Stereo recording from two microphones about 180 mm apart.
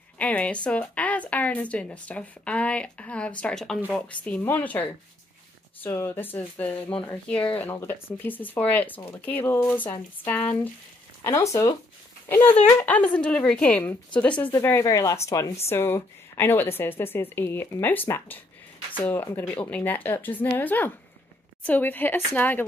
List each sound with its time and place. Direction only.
0.2 s a woman's voice: 10° left (ahead or behind)